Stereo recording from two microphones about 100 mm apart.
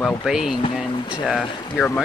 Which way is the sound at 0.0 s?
5° right (ahead or behind).